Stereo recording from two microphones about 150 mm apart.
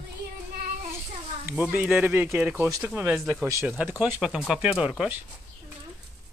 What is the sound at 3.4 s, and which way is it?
Speech, 20° right (ahead or behind).